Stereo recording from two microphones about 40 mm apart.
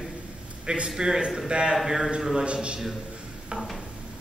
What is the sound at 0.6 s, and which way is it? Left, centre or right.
A man's voice, right.